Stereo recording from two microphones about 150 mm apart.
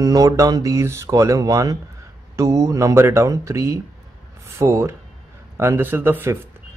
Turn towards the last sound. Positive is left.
turn(degrees=-15)  # may be behind; listen again after turning